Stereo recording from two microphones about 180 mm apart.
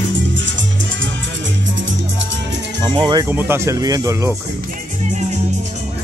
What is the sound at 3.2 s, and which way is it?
Speech, 10° right (ahead or behind).